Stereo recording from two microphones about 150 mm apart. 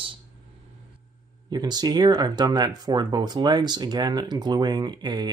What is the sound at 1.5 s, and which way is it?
Speech, 30° right (ahead or behind).